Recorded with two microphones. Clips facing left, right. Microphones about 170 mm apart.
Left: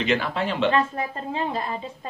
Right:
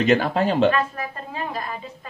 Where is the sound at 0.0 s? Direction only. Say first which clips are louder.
Right 5 dB; 45° right (ahead or behind).